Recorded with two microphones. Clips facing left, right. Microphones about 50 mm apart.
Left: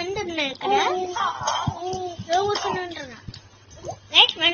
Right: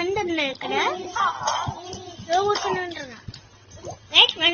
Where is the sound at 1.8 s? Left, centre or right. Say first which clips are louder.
Left 9 dB; left.